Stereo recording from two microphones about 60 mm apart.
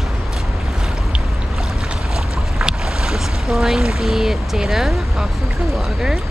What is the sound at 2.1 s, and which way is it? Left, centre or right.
Boat, centre.